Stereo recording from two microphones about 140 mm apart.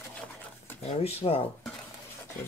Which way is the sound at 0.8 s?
45° left (ahead or behind).